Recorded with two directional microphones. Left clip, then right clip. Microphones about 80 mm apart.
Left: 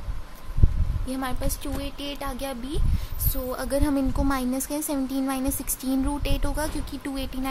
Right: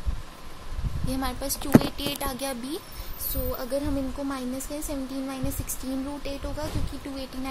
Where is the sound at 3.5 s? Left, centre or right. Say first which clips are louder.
Left 4 dB; left.